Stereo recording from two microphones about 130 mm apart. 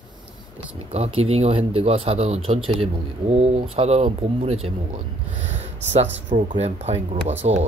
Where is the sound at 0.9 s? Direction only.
50° right (ahead or behind).